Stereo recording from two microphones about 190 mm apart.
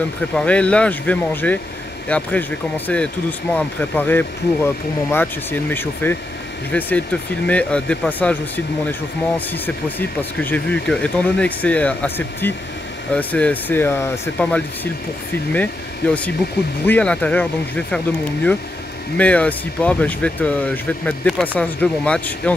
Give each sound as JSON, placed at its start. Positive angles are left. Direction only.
{"t": 0.4, "sound": "speech", "side_deg": 5}